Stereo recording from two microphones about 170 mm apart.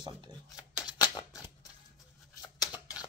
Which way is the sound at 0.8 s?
25° left (ahead or behind).